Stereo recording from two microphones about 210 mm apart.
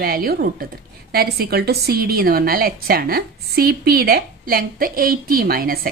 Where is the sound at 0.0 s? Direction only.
45° right (ahead or behind).